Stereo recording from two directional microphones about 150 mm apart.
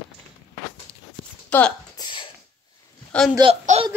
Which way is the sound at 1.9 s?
35° left (ahead or behind).